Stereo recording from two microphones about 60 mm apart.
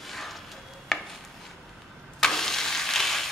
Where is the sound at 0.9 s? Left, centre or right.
Centre.